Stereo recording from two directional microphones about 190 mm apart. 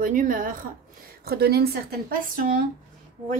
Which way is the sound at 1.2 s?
55° right (ahead or behind).